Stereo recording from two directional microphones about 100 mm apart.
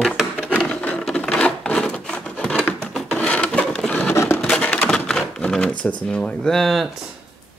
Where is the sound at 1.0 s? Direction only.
5° left (ahead or behind).